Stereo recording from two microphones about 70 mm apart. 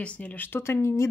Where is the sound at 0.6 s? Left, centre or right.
Left.